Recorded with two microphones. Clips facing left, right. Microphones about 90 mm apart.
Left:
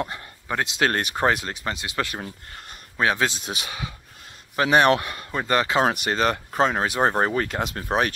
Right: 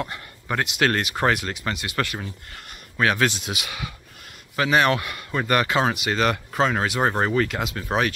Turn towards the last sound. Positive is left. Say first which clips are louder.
# right 2 dB
turn(degrees=40)  # may be behind; listen again after turning